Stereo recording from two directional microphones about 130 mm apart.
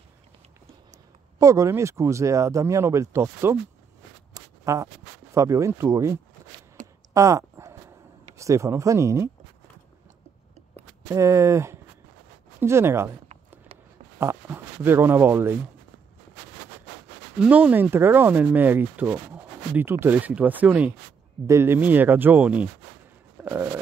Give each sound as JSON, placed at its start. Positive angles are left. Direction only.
{"t": 1.4, "sound": "speech", "side_deg": -25}
{"t": 4.3, "sound": "a sound", "side_deg": -25}
{"t": 5.3, "sound": "speech", "side_deg": -25}
{"t": 6.8, "sound": "a sound", "side_deg": -75}
{"t": 7.2, "sound": "dog", "side_deg": -25}
{"t": 8.4, "sound": "speech", "side_deg": -25}
{"t": 11.1, "sound": "speech", "side_deg": -20}
{"t": 14.1, "sound": "speech", "side_deg": -20}
{"t": 17.4, "sound": "speech", "side_deg": -10}
{"t": 23.4, "sound": "a sound", "side_deg": -20}